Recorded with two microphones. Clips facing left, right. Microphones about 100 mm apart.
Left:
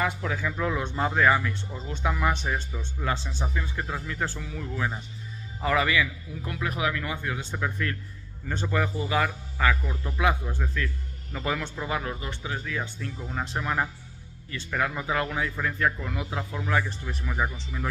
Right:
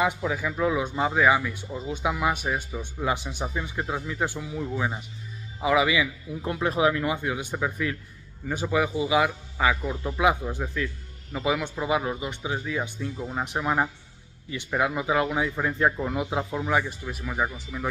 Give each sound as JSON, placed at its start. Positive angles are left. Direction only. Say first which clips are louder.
{"t": 0.0, "sound": "speech", "louder": "right 3 dB", "side_deg": -10}
{"t": 6.4, "sound": "speech", "louder": "right 6 dB", "side_deg": -25}